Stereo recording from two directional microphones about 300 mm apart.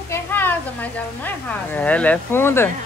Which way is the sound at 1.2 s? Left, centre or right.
Centre.